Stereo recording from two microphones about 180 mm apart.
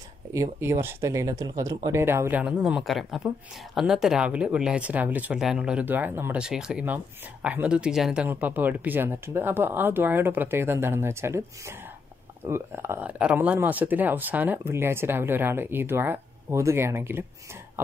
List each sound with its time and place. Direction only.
0.3 s speech: 15° right (ahead or behind)